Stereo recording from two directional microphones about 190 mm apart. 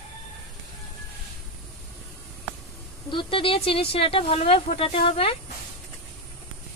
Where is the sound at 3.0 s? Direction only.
25° left (ahead or behind).